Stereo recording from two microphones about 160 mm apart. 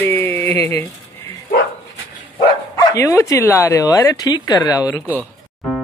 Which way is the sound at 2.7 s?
20° left (ahead or behind).